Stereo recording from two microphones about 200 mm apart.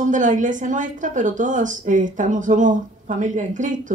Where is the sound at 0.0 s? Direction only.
40° right (ahead or behind).